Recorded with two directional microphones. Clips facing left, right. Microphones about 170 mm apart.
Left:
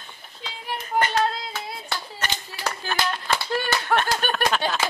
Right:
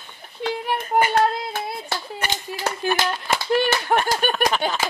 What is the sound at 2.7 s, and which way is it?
Speech, 15° right (ahead or behind).